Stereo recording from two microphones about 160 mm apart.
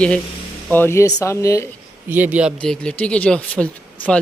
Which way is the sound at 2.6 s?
5° left (ahead or behind).